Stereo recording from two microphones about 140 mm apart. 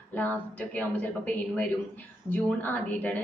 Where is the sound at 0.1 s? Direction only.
10° left (ahead or behind).